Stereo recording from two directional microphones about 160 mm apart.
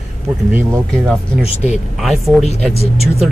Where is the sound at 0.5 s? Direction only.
10° right (ahead or behind).